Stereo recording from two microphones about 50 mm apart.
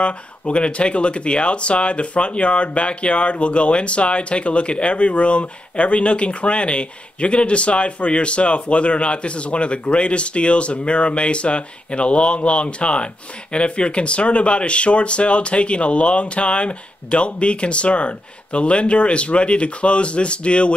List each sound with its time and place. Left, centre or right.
0.0 s speech: left